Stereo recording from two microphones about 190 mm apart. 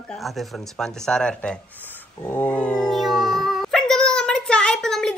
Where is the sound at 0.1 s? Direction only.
Centre (ahead or behind).